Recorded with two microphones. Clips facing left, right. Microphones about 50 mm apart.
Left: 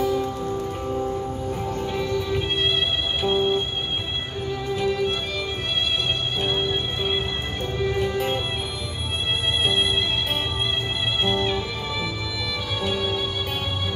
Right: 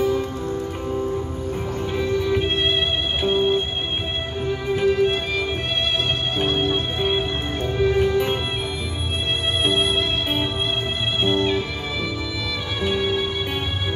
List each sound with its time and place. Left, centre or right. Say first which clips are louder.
1.8 s music: right 5 dB; centre
4.8 s music: right 6 dB; centre
11.2 s music: right 5 dB; centre
12.8 s music: right 4 dB; centre